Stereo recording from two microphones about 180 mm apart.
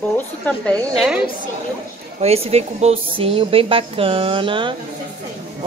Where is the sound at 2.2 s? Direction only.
35° right (ahead or behind).